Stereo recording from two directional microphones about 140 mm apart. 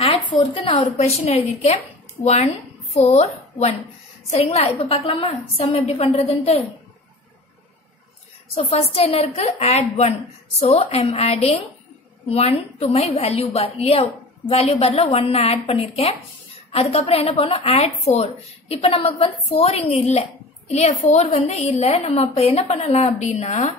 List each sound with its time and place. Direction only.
0.0 s a sound: 40° left (ahead or behind)
0.7 s a child's voice: 50° left (ahead or behind)
8.5 s a child's voice: 45° left (ahead or behind)